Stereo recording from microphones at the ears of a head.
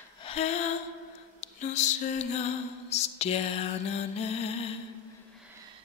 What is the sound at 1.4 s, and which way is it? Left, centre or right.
Music, left.